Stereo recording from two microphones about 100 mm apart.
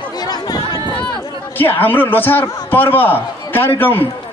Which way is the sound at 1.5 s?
20° left (ahead or behind).